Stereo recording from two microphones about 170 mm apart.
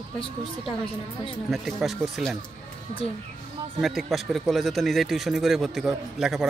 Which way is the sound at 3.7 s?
Centre (ahead or behind).